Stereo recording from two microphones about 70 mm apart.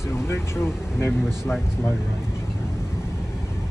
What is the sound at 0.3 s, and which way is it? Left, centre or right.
Speech, left.